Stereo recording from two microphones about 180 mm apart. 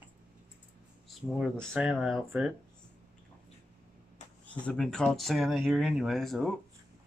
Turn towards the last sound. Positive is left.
turn(degrees=0)  # may be behind; listen again after turning